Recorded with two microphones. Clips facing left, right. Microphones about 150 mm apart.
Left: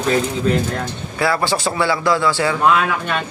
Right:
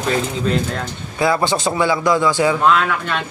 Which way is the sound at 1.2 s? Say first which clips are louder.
Right 2 dB; 20° right (ahead or behind).